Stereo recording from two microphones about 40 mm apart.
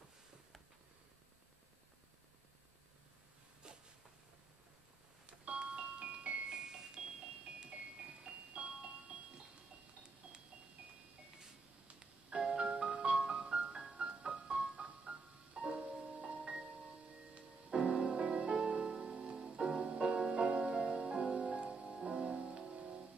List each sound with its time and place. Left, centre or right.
3.6 s a sound: right
5.2 s music: right
6.5 s music: centre
7.7 s music: right
12.3 s music: centre